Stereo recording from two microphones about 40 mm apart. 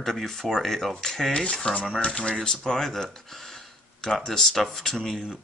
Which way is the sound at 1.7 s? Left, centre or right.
Left.